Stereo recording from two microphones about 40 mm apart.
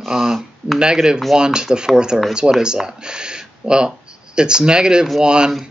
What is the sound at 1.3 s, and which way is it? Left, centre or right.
Speech, centre.